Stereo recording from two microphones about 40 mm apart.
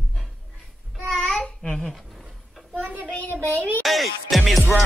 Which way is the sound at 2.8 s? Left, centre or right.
Right.